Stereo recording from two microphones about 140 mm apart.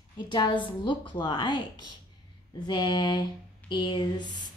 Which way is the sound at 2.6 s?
30° left (ahead or behind).